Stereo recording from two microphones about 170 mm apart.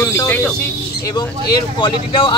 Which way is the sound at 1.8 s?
30° left (ahead or behind).